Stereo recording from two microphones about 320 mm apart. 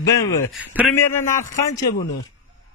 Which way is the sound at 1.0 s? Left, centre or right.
Centre.